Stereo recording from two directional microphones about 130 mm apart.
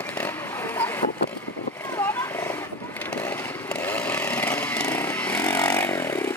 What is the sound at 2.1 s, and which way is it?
Wild animals, 20° left (ahead or behind).